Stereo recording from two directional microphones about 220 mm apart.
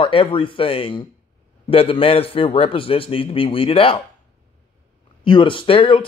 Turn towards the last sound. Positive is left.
turn(degrees=25)  # may be behind; listen again after turning